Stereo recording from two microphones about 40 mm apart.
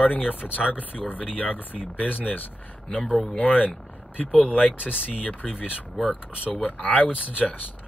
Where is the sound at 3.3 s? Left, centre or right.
Left.